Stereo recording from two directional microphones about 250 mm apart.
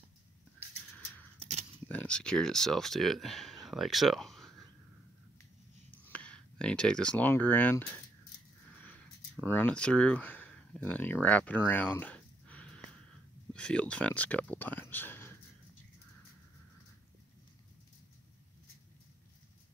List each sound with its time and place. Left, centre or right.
1.4 s dog: right
1.9 s speech: centre
5.9 s a sound: centre
9.4 s speech: centre